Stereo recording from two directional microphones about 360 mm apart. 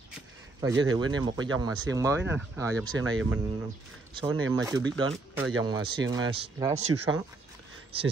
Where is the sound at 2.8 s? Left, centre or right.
Right.